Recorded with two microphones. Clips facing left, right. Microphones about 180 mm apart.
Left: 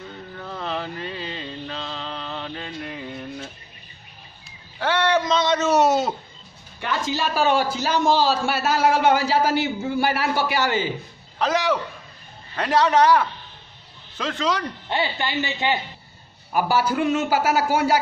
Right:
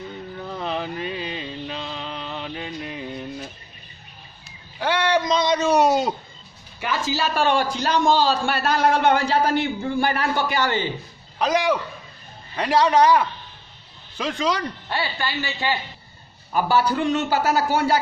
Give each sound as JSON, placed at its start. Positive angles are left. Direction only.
{"t": 0.4, "sound": "a sound", "side_deg": -15}
{"t": 4.7, "sound": "a sound", "side_deg": -10}
{"t": 6.8, "sound": "a man's voice", "side_deg": -5}
{"t": 11.3, "sound": "a man's voice", "side_deg": -15}
{"t": 14.9, "sound": "speech", "side_deg": 20}
{"t": 16.5, "sound": "a man's voice", "side_deg": 10}